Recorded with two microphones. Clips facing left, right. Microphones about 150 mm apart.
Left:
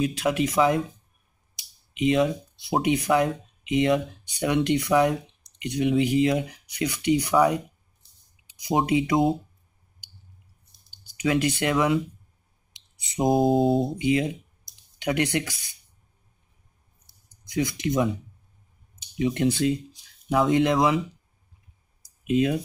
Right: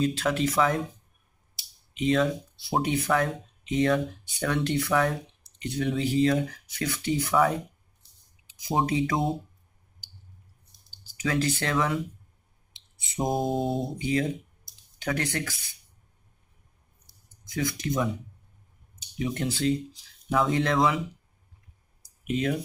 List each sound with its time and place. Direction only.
0.0 s speech: 15° left (ahead or behind)
1.6 s finger snapping: 15° left (ahead or behind)
2.8 s speech: 15° left (ahead or behind)
8.5 s speech: 15° left (ahead or behind)
10.9 s speech: 15° left (ahead or behind)
13.1 s mantra: centre (ahead or behind)
13.9 s speech: 15° left (ahead or behind)
17.5 s speech: 20° left (ahead or behind)
19.1 s speech: 20° left (ahead or behind)
22.2 s speech: 20° left (ahead or behind)